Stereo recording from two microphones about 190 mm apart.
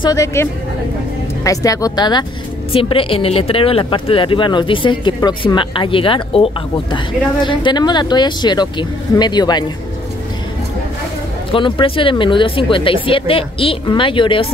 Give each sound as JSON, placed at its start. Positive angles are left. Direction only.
{"t": 0.0, "sound": "speech", "side_deg": 20}
{"t": 11.5, "sound": "speech", "side_deg": 30}